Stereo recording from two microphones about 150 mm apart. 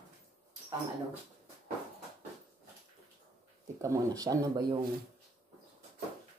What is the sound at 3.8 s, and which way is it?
Speech, 20° right (ahead or behind).